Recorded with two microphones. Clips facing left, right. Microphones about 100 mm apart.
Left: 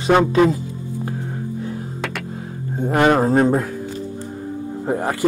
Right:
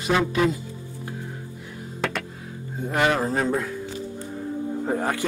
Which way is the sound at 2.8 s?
45° left (ahead or behind).